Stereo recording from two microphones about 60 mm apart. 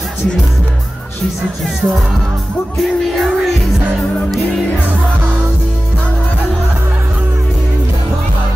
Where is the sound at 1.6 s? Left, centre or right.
Centre.